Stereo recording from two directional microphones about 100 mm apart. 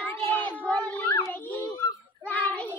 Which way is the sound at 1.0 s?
30° left (ahead or behind).